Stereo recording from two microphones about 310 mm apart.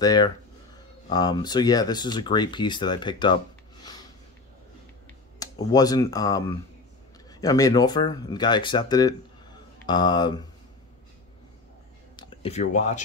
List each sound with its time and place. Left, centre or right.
0.0 s speech: centre
5.4 s speech: centre
12.2 s speech: left